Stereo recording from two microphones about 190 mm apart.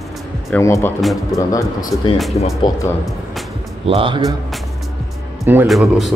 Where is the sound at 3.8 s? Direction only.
30° right (ahead or behind).